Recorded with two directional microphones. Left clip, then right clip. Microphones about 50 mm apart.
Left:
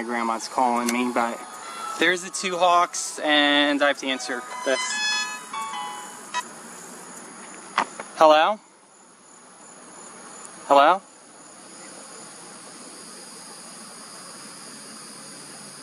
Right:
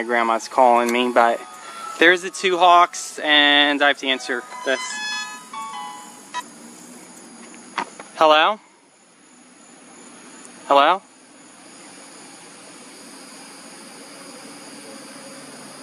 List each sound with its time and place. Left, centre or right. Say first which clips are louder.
0.0 s speech: right 7 dB; centre
4.5 s music: left 2 dB; centre
7.7 s a sound: left 3 dB; centre
8.1 s speech: right 1 dB; centre
10.7 s speech: right 1 dB; centre